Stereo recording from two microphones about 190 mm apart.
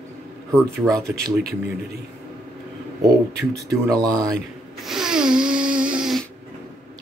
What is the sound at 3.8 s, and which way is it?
Speech, 20° right (ahead or behind).